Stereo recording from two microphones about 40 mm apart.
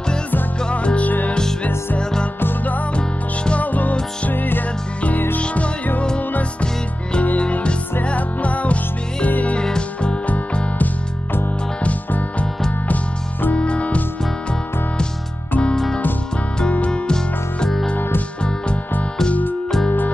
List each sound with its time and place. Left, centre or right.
0.7 s music: left
1.0 s music: left
3.6 s music: left
5.4 s music: left
7.3 s music: left
9.6 s music: left
11.8 s music: left
13.6 s music: left
15.7 s music: centre
16.7 s music: left
17.1 s music: centre